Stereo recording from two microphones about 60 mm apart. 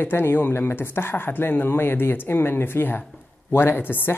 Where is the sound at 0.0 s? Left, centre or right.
Left.